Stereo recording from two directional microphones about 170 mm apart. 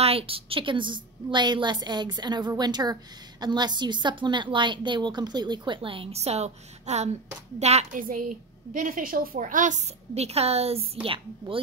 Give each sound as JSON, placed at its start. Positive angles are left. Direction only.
{"t": 0.0, "sound": "a woman's voice", "side_deg": -35}
{"t": 8.0, "sound": "a woman's voice", "side_deg": -55}